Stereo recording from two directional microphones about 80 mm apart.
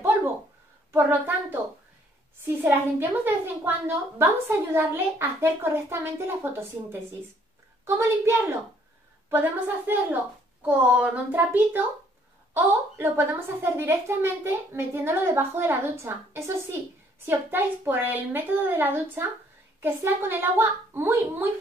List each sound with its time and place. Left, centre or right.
0.9 s a woman's voice: right